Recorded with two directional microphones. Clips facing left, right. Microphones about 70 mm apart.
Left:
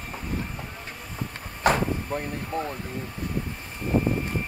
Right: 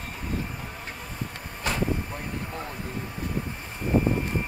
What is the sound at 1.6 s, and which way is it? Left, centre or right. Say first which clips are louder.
Vehicle: left 8 dB; left.